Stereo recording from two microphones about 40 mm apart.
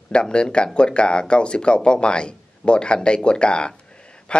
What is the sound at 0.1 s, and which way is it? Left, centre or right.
Speech, left.